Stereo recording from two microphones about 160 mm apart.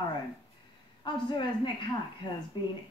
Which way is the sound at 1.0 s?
30° left (ahead or behind).